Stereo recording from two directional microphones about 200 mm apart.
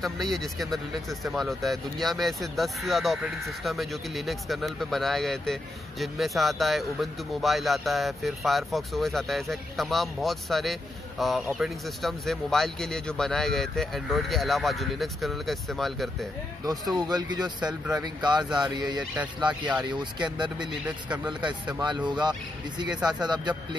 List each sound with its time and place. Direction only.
0.0 s speech: centre (ahead or behind)
16.9 s speech: 20° right (ahead or behind)
21.7 s speech: 20° right (ahead or behind)